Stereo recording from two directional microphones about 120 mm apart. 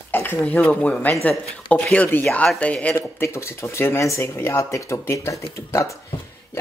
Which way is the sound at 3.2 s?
25° left (ahead or behind).